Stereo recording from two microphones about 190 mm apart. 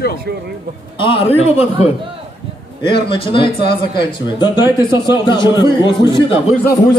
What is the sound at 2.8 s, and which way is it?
Speech, 25° left (ahead or behind).